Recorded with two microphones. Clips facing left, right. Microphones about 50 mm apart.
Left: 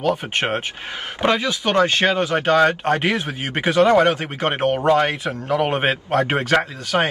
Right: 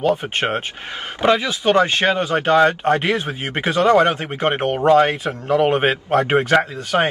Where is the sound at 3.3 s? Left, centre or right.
Centre.